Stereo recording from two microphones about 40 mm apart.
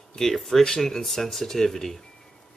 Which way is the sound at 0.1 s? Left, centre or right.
Centre.